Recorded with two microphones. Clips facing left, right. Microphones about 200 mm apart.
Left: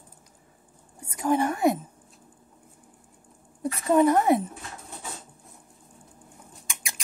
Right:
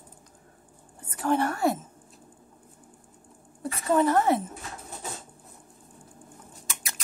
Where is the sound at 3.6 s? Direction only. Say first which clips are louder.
Left 3 dB; 15° left (ahead or behind).